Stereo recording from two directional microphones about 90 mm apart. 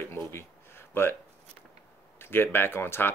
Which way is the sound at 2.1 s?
25° left (ahead or behind).